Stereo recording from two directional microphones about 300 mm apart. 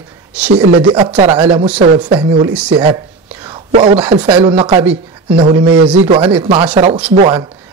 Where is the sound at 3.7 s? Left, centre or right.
Centre.